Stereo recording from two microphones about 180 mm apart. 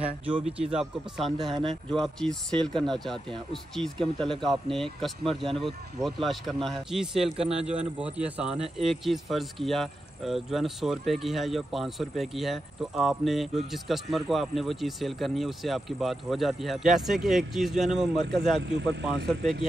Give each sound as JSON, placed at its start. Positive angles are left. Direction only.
{"t": 0.3, "sound": "speech", "side_deg": -30}
{"t": 0.7, "sound": "speech", "side_deg": 0}
{"t": 18.8, "sound": "speech", "side_deg": -70}